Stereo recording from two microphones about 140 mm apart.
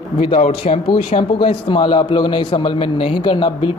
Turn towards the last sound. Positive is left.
turn(degrees=40)  # may be behind; listen again after turning